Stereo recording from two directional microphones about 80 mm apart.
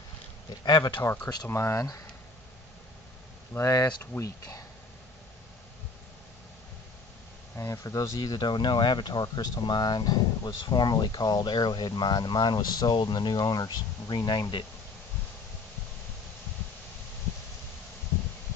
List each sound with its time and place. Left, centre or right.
0.7 s speech: left
1.0 s speech: left
3.5 s speech: left
4.0 s speech: left
7.5 s speech: left
8.2 s speech: left